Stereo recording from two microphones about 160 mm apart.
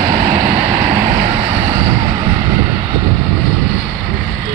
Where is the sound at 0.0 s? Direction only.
50° right (ahead or behind).